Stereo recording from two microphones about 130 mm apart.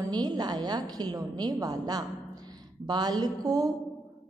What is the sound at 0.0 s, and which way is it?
A woman's voice, 30° right (ahead or behind).